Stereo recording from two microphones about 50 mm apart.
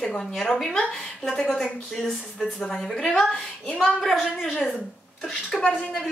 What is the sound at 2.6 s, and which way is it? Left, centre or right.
A woman's voice, centre.